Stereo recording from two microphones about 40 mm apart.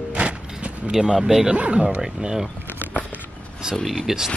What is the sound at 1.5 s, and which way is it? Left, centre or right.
Speech, right.